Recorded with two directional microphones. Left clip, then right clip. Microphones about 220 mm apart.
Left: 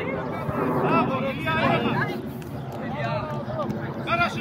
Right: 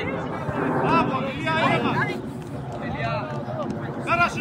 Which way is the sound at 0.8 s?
45° right (ahead or behind).